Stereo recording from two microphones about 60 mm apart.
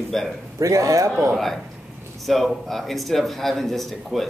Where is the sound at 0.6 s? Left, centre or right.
Right.